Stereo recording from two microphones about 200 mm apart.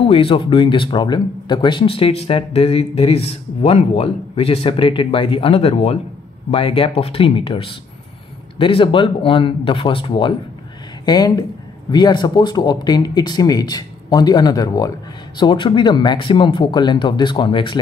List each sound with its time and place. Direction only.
0.0 s speech: 25° left (ahead or behind)